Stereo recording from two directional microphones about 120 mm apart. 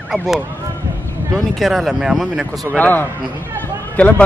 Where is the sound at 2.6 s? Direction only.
15° left (ahead or behind).